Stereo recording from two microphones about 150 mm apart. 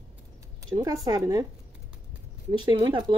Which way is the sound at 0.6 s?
25° right (ahead or behind).